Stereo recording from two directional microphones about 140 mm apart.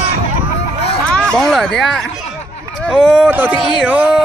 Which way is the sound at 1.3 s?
5° left (ahead or behind).